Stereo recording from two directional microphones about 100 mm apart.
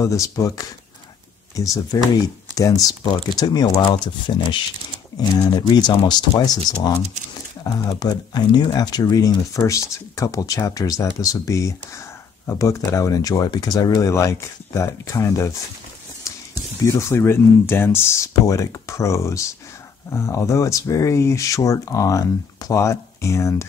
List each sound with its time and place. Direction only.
0.0 s speech: 30° left (ahead or behind)
8.0 s speech: 45° left (ahead or behind)
16.8 s speech: 25° left (ahead or behind)